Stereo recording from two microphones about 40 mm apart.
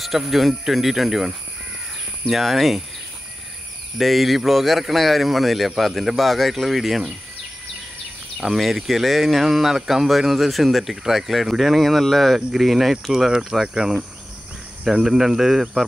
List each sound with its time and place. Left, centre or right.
0.0 s speech: centre
4.0 s speech: centre
8.5 s speech: centre